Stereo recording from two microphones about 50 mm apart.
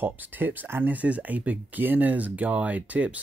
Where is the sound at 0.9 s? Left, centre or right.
Right.